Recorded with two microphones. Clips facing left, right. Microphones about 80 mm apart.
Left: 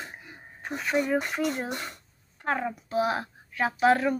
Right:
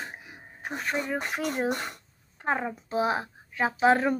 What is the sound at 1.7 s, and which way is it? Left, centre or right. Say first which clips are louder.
Speech: right 4 dB; right.